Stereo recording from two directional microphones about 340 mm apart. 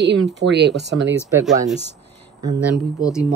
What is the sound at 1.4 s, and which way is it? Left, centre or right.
Speech, centre.